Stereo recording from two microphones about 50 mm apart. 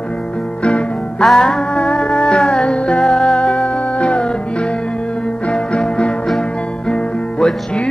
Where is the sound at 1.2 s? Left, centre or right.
Centre.